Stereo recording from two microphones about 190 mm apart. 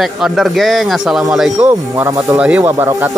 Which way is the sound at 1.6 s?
15° right (ahead or behind).